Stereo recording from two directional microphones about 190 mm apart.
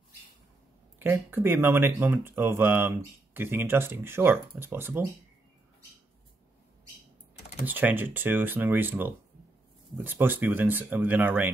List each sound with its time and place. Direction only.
0.9 s speech: 10° right (ahead or behind)
7.6 s speech: 10° right (ahead or behind)